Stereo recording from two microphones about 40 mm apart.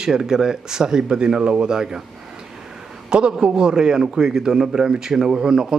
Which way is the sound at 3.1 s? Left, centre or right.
Right.